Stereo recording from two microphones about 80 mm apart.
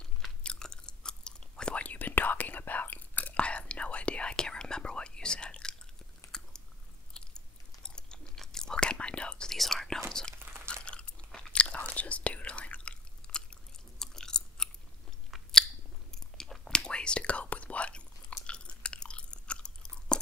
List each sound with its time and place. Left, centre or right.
0.0 s chewing: centre
6.3 s biting: centre
7.2 s chewing: centre
7.8 s whispering: centre
10.4 s crunch: right
10.7 s biting: centre
11.9 s chewing: centre